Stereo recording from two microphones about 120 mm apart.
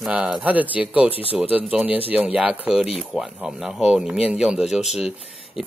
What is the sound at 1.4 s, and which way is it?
Speech, 10° right (ahead or behind).